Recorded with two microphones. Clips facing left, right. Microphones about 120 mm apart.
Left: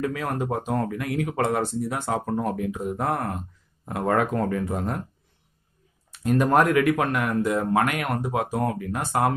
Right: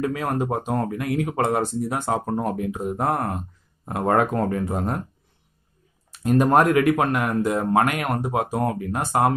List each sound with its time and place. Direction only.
0.0 s speech: 25° right (ahead or behind)
6.2 s speech: 30° right (ahead or behind)